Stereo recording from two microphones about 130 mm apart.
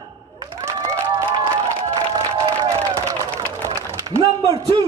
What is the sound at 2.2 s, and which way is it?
Music, 40° right (ahead or behind).